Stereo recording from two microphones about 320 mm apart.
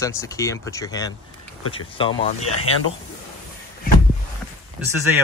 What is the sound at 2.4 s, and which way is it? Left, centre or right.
Speech, left.